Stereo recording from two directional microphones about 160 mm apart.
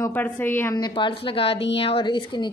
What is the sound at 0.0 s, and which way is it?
Speech, 10° left (ahead or behind).